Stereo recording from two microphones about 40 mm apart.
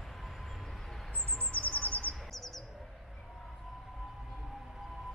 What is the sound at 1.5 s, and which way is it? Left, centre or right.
Chirp, left.